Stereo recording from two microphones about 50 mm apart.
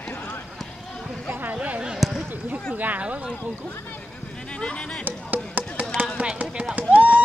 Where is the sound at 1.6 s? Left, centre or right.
Right.